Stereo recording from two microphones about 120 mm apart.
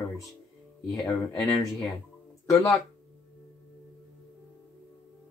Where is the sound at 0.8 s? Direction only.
15° left (ahead or behind).